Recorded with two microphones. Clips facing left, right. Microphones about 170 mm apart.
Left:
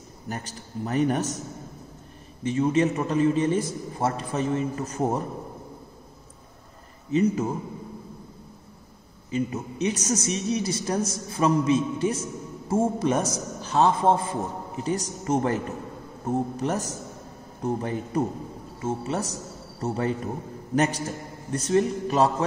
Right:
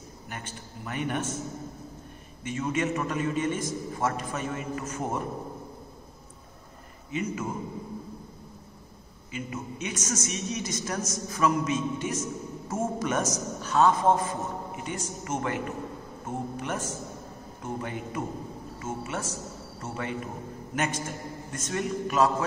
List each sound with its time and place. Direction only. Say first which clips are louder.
0.3 s a man's voice: left 7 dB; 35° left (ahead or behind)
2.4 s a man's voice: left 7 dB; 35° left (ahead or behind)
7.1 s a man's voice: left 9 dB; 35° left (ahead or behind)
9.3 s a man's voice: left 8 dB; 35° left (ahead or behind)